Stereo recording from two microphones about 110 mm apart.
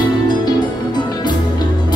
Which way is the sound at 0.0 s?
40° left (ahead or behind).